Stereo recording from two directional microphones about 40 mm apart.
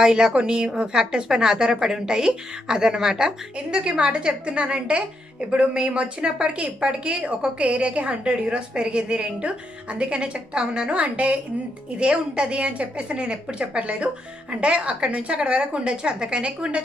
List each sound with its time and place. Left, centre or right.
0.0 s a woman's voice: centre